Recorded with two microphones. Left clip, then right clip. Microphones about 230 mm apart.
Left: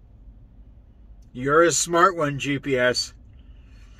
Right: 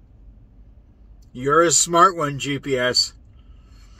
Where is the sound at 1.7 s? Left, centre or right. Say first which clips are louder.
Right 3 dB; centre.